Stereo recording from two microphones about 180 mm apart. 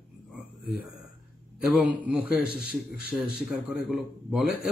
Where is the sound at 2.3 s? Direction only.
55° left (ahead or behind).